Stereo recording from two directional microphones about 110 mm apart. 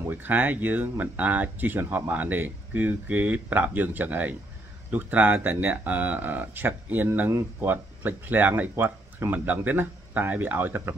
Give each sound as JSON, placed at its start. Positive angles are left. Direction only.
{"t": 0.0, "sound": "speech", "side_deg": -15}